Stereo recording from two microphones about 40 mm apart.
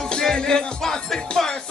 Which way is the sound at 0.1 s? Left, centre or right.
Centre.